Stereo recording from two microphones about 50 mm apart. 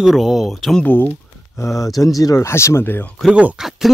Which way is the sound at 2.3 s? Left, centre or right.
Left.